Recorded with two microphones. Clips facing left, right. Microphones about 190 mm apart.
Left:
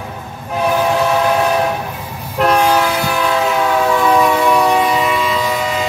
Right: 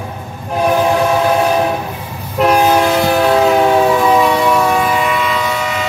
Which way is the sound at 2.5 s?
25° right (ahead or behind).